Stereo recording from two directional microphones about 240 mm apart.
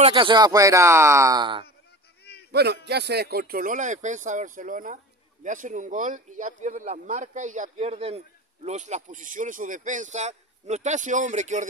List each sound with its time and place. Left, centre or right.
0.0 s speech: centre
2.5 s speech: right